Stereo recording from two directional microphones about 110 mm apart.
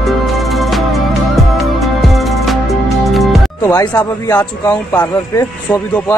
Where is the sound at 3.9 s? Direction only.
30° left (ahead or behind).